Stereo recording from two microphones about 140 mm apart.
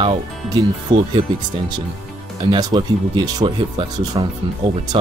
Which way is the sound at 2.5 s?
35° right (ahead or behind).